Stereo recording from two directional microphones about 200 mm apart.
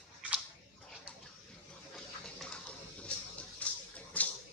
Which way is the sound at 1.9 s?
5° left (ahead or behind).